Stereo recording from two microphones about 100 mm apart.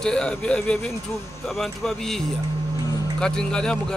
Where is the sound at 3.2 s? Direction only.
5° left (ahead or behind).